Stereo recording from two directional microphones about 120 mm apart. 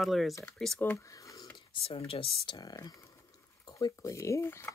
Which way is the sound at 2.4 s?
35° left (ahead or behind).